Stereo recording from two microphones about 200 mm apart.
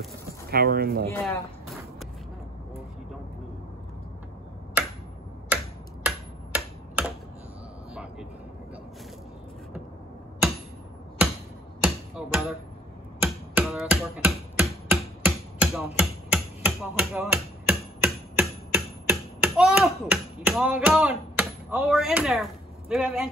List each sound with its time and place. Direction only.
0.5 s speech: 50° right (ahead or behind)
1.1 s speech: 10° left (ahead or behind)
4.8 s tick-tock: 5° right (ahead or behind)
6.0 s finger snapping: 5° right (ahead or behind)
7.9 s vehicle: 5° right (ahead or behind)
11.8 s music: 5° right (ahead or behind)
13.2 s a sound: 5° right (ahead or behind)